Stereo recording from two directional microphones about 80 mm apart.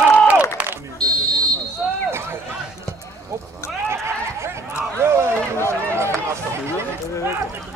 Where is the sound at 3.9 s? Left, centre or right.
Right.